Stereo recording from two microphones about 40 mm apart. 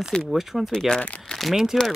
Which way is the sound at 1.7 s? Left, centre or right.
Centre.